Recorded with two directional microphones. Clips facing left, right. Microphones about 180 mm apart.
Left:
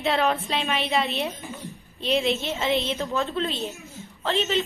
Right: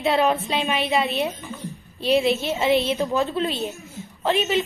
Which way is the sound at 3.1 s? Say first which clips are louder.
Right 3 dB; 15° right (ahead or behind).